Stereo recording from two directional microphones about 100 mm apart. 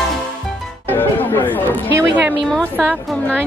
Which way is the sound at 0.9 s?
20° left (ahead or behind).